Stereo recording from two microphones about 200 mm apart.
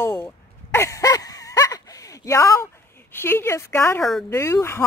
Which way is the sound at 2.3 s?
15° left (ahead or behind).